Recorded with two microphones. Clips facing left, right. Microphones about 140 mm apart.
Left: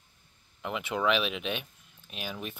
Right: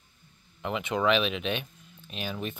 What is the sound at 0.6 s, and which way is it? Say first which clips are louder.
Speech: right 3 dB; 5° left (ahead or behind).